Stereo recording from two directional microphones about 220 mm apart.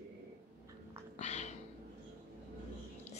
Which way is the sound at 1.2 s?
30° left (ahead or behind).